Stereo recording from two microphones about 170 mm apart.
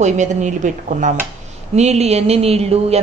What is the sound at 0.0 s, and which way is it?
A woman's voice, 45° right (ahead or behind).